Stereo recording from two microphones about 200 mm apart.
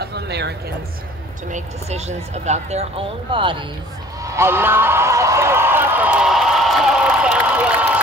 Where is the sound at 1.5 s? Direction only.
35° right (ahead or behind).